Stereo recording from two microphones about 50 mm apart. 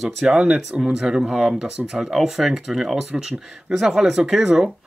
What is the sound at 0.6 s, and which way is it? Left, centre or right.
Speech, centre.